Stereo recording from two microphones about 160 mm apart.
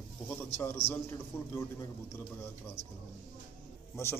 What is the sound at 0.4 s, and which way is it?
A man's voice, 15° left (ahead or behind).